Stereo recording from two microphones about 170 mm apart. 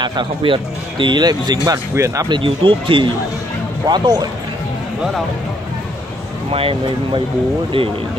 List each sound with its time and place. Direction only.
0.0 s speech: 25° right (ahead or behind)
6.5 s speech: 35° right (ahead or behind)